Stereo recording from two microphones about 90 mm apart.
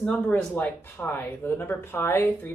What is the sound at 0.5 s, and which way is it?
Speech, 20° left (ahead or behind).